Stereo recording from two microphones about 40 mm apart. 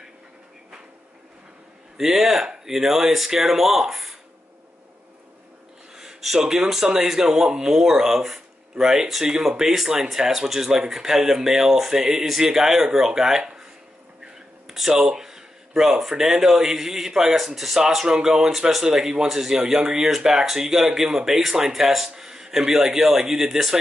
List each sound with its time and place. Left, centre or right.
2.0 s speech: centre
5.9 s a sound: centre
6.7 s speech: centre
14.7 s speech: centre
19.2 s speech: centre